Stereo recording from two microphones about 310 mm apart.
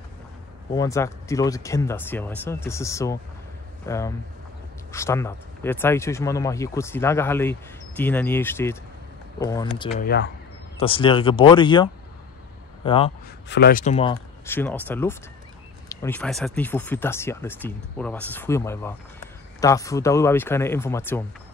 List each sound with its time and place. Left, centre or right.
0.7 s speech: centre
9.9 s speech: left
10.8 s speech: centre
13.5 s speech: left
14.4 s speech: centre